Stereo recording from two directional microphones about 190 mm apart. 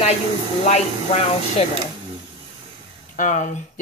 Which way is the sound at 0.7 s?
35° left (ahead or behind).